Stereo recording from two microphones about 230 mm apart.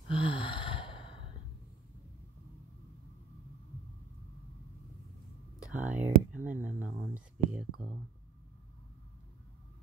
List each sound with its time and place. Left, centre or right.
0.1 s sigh: left
5.9 s a sound: centre
6.3 s whispering: centre